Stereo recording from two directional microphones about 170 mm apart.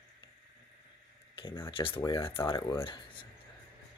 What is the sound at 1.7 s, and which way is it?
Speech, 30° left (ahead or behind).